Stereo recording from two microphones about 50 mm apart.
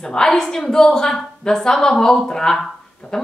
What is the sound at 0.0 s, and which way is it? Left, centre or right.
Speech, centre.